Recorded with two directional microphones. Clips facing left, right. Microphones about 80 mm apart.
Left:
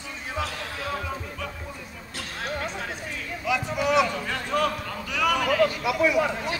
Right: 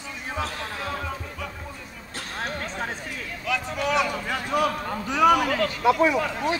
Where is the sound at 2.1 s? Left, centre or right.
Right.